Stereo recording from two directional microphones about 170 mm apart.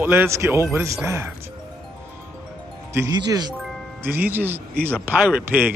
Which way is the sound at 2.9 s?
20° right (ahead or behind).